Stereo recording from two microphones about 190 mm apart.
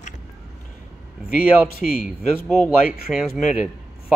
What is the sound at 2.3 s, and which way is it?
Speech, 10° left (ahead or behind).